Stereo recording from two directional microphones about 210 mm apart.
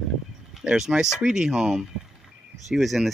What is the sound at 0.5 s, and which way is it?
Speech, 5° right (ahead or behind).